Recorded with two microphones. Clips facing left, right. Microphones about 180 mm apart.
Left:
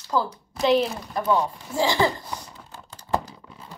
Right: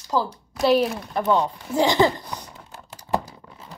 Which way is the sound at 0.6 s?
10° right (ahead or behind).